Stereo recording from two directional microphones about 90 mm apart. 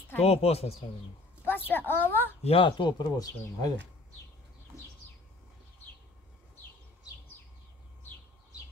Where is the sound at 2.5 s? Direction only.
90° left.